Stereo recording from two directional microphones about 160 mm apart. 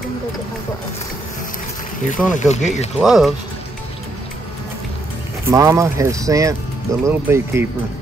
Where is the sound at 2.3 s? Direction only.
50° left (ahead or behind).